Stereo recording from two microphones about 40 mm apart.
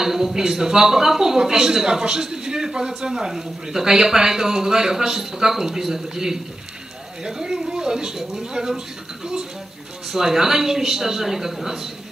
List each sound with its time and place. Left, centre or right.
0.0 s speech: centre